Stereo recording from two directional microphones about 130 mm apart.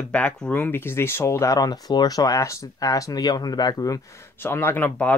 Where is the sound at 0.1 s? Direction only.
10° left (ahead or behind).